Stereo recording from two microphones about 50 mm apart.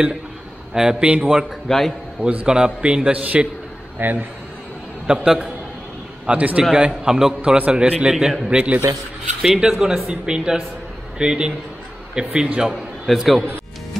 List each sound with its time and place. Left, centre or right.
0.7 s a man's voice: right
1.7 s a man's voice: centre
2.2 s a man's voice: centre
4.0 s a man's voice: right
5.0 s a man's voice: centre
6.3 s a man's voice: right
6.7 s speech: centre
7.4 s a man's voice: right
8.1 s speech: centre
8.5 s a man's voice: right
9.4 s speech: centre
12.6 s a man's voice: centre